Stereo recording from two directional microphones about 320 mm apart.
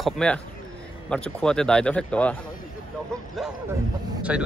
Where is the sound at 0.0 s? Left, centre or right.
Centre.